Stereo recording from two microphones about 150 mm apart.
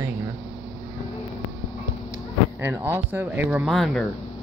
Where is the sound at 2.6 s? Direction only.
15° right (ahead or behind).